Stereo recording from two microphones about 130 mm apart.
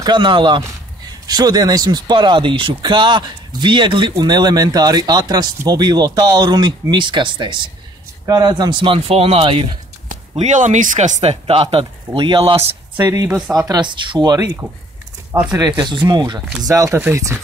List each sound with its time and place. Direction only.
0.0 s speech: 35° right (ahead or behind)
10.3 s speech: 65° right (ahead or behind); by 12.6 s 40° right (ahead or behind)
12.9 s speech: 20° right (ahead or behind)
13.7 s speech: 35° right (ahead or behind)